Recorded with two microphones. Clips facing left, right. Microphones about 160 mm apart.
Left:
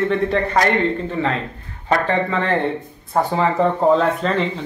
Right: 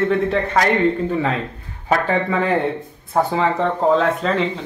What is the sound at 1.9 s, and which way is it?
Speech, 10° right (ahead or behind).